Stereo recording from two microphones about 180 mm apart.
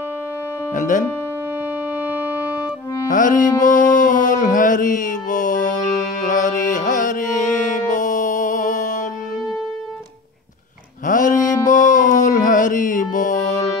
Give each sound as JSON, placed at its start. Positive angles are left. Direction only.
{"t": 0.7, "sound": "speech", "side_deg": 45}
{"t": 2.0, "sound": "music", "side_deg": -10}
{"t": 3.1, "sound": "music", "side_deg": 45}
{"t": 11.1, "sound": "a sound", "side_deg": 45}